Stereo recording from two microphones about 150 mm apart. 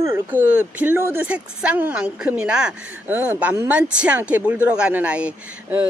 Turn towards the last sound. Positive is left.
turn(degrees=-10)  # may be behind; listen again after turning